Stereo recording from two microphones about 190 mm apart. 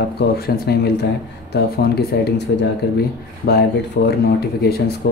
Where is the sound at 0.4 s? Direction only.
55° left (ahead or behind).